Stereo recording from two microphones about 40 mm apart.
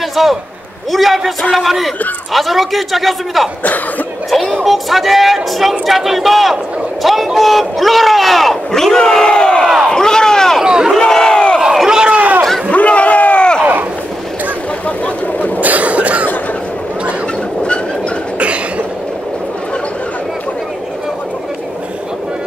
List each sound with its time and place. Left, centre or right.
0.1 s a man's voice: centre
4.6 s speech: centre; by 9.7 s left
9.8 s slam: centre
10.6 s crowd: centre
11.0 s crowd: centre
11.9 s crowd: right
12.7 s crowd: left
13.6 s a sound: right
15.3 s a sound: left
15.6 s a sound: right
18.4 s cough: right